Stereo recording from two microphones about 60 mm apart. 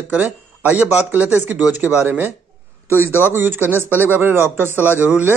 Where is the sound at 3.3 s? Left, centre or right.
Right.